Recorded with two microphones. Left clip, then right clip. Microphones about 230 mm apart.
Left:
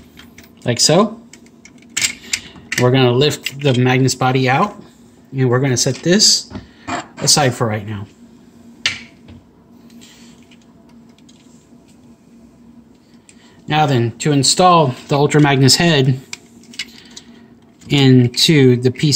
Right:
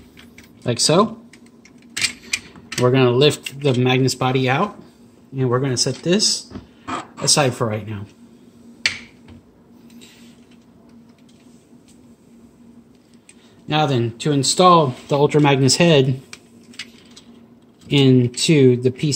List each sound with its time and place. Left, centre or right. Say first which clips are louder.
0.7 s speech: left 3 dB; centre
2.7 s speech: left 2 dB; centre
5.3 s speech: left 4 dB; centre
13.7 s speech: left 4 dB; centre
17.8 s speech: left 2 dB; centre